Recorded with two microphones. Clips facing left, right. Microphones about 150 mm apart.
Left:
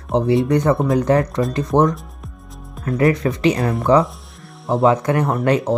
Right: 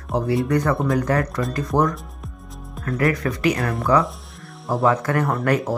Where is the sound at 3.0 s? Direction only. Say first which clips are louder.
Left 4 dB; 25° left (ahead or behind).